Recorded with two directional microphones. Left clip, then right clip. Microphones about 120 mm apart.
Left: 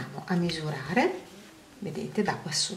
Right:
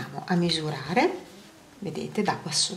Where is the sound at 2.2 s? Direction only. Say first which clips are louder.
Right 2 dB; 15° right (ahead or behind).